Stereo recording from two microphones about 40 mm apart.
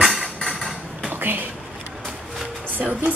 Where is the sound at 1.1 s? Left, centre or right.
Right.